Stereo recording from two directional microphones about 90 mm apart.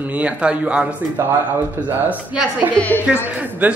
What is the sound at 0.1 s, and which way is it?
Speech, 15° right (ahead or behind).